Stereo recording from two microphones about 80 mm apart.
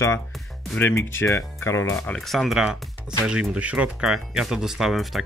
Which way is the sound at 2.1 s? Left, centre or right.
Centre.